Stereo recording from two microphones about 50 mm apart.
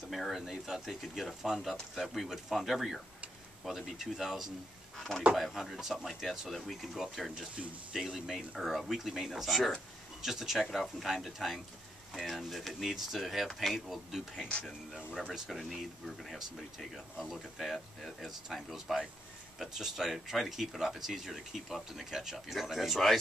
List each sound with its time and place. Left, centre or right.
0.1 s speech: centre
4.9 s speech: centre
5.3 s speech: centre
15.5 s speech: centre